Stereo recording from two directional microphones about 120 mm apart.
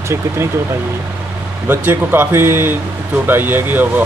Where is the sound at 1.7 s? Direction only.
15° right (ahead or behind).